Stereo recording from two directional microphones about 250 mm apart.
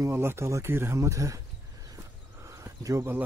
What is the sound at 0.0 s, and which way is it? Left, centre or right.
Speech, centre.